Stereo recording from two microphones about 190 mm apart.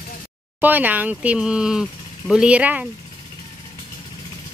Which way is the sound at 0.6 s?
10° right (ahead or behind).